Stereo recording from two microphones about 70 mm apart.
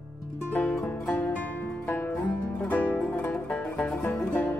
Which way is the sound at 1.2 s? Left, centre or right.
Left.